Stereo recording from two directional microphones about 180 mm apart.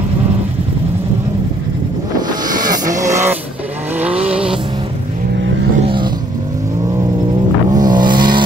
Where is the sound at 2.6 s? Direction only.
20° right (ahead or behind).